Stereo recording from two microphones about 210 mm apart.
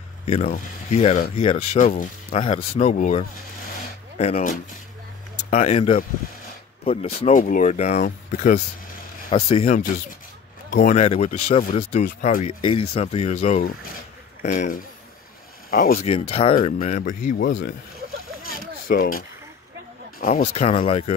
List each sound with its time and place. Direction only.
0.2 s speech: 30° left (ahead or behind)
10.8 s speech: 35° left (ahead or behind)
12.6 s speech: 25° left (ahead or behind); by 16.1 s 45° left (ahead or behind)
16.1 s speech: 30° left (ahead or behind)
18.6 s a sound: 45° left (ahead or behind)
20.2 s speech: 45° left (ahead or behind)
20.5 s speech: 30° left (ahead or behind)